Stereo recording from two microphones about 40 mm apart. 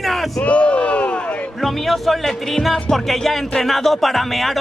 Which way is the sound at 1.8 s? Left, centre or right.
Centre.